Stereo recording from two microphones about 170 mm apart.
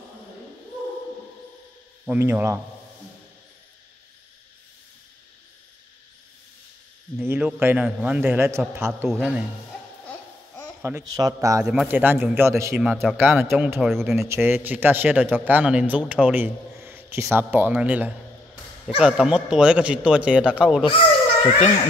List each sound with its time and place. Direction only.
2.0 s speech: 10° right (ahead or behind)
7.2 s speech: 5° right (ahead or behind)
10.8 s speech: 15° right (ahead or behind)
11.6 s speech: 5° right (ahead or behind)
12.8 s speech: centre (ahead or behind)
13.4 s speech: 15° right (ahead or behind)
14.1 s speech: 15° right (ahead or behind)